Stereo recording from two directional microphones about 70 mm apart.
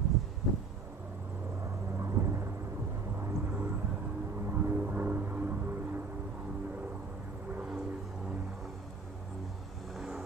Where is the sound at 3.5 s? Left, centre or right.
Right.